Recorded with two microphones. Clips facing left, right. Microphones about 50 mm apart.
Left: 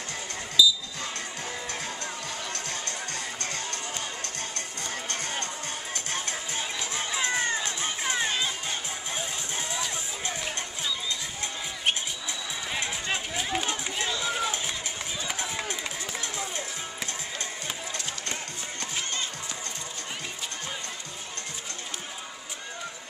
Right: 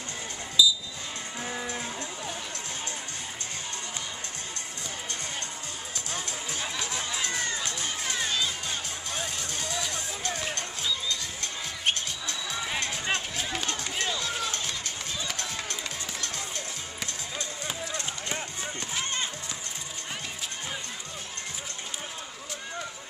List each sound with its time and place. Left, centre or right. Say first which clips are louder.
0.6 s basketball bounce: left 1 dB; centre
6.1 s music: left 1 dB; left
6.8 s music: left 4 dB; left
13.1 s run: left 2 dB; centre
14.2 s music: left 3 dB; centre
15.2 s run: left 5 dB; centre